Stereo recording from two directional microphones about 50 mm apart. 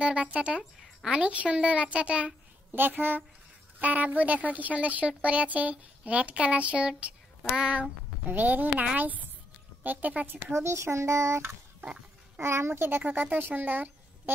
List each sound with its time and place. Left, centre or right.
0.0 s a woman's voice: right
2.7 s a woman's voice: right; by 7.8 s centre
8.3 s a child's voice: right
10.5 s a child's voice: right
13.2 s a woman's voice: right